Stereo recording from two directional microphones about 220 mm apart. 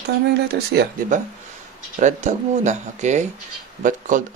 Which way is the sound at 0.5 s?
50° right (ahead or behind).